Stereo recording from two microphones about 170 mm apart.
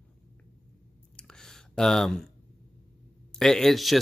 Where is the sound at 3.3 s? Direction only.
5° left (ahead or behind).